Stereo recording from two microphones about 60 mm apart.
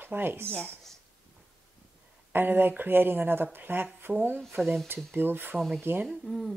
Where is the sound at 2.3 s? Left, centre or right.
Right.